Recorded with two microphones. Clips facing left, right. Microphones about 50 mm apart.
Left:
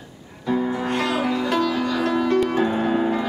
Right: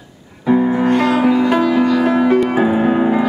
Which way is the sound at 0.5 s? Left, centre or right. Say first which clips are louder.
Right 9 dB; right.